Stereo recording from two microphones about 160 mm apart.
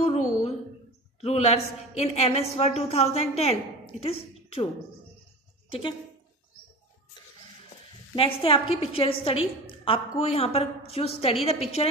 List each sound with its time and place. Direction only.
0.0 s a sound: 40° left (ahead or behind)
1.2 s a woman's voice: 40° left (ahead or behind)
8.2 s a woman's voice: 35° left (ahead or behind)